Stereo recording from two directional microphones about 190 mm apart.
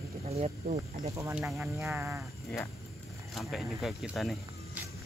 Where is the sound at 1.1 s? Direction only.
15° right (ahead or behind).